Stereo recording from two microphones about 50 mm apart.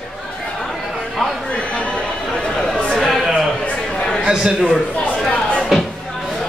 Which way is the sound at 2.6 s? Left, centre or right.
Centre.